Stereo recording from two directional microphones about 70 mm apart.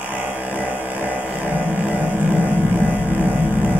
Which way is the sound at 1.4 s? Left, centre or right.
Right.